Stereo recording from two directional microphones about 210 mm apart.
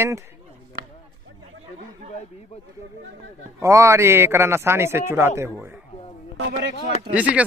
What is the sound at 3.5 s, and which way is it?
A man's voice, 15° right (ahead or behind).